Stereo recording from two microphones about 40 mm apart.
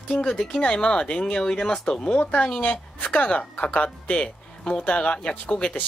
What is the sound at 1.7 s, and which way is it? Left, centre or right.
Speech, left.